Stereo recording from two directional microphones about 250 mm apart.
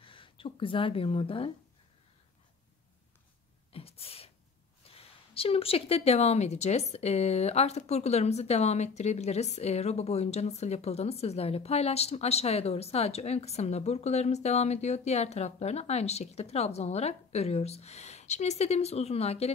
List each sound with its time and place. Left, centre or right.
0.0 s speech: left
3.7 s a sound: left
4.8 s speech: left